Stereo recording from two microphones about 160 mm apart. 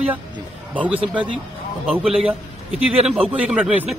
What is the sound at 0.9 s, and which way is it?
Speech, 35° right (ahead or behind).